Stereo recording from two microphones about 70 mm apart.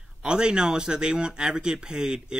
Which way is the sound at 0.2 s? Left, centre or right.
Centre.